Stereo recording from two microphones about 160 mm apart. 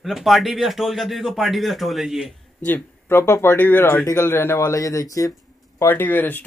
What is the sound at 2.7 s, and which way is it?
Speech, 15° left (ahead or behind).